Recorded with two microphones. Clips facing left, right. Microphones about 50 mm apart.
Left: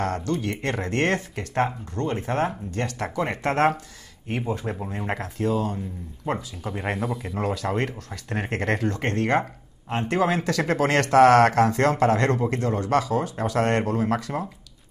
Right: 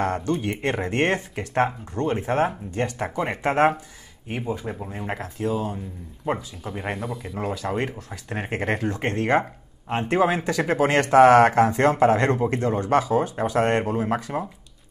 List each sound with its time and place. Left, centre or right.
0.0 s speech: centre
4.3 s speech: centre